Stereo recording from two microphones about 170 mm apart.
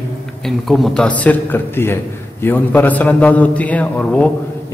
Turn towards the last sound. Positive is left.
turn(degrees=5)  # may be behind; listen again after turning